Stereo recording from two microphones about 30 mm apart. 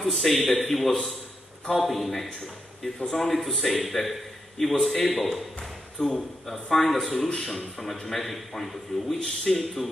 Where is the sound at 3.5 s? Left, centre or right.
Centre.